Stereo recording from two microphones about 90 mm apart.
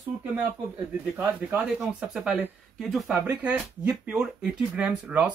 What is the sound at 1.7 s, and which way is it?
Speech, 5° right (ahead or behind).